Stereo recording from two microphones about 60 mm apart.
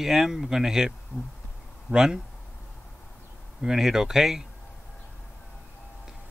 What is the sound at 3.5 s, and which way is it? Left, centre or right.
Speech, centre.